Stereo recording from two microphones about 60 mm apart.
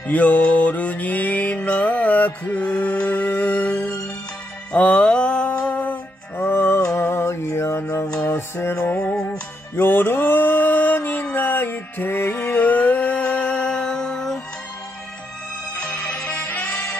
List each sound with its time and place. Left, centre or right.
0.0 s music: left
6.4 s music: left
7.8 s music: left
8.3 s music: left
8.9 s music: centre
9.8 s mantra: left
11.3 s music: left; by 14.4 s centre
15.8 s music: centre